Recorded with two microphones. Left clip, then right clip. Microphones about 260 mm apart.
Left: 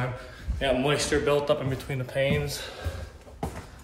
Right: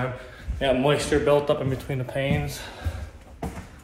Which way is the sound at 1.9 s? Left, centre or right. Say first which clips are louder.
Left 3 dB; centre.